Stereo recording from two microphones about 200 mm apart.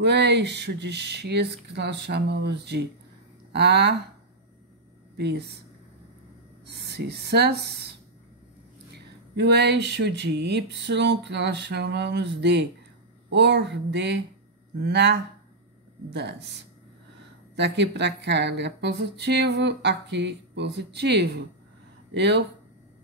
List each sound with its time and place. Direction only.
0.0 s speech: 60° right (ahead or behind)
5.1 s speech: 55° right (ahead or behind)
6.7 s speech: 55° right (ahead or behind)
8.9 s speech: 55° right (ahead or behind)
17.6 s speech: 60° right (ahead or behind)